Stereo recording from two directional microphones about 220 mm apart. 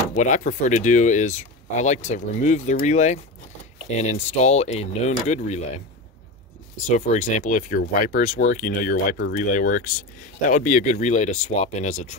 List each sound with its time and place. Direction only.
0.1 s speech: 35° left (ahead or behind)
7.1 s speech: 35° left (ahead or behind)